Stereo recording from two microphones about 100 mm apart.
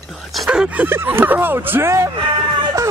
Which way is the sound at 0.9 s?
20° right (ahead or behind).